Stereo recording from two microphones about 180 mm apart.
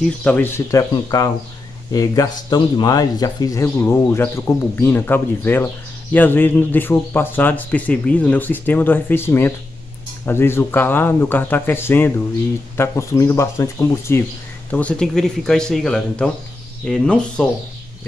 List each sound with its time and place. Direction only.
0.0 s speech: 5° left (ahead or behind)